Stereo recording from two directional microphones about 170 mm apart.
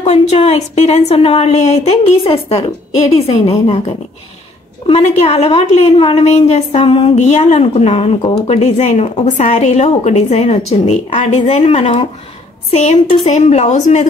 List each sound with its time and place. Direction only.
0.0 s a woman's voice: 35° left (ahead or behind)